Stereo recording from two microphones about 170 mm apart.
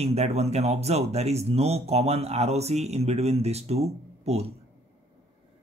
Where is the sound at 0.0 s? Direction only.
40° right (ahead or behind).